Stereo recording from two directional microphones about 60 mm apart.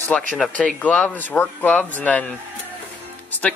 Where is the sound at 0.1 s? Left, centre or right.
Centre.